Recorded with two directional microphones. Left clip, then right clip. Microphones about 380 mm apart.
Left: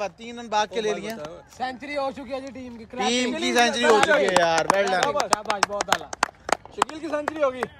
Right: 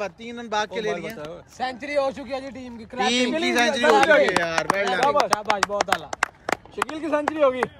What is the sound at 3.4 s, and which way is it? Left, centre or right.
A man's voice, centre.